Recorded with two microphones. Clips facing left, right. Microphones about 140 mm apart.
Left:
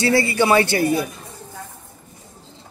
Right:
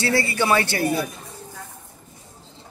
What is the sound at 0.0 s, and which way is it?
Speech, 15° left (ahead or behind).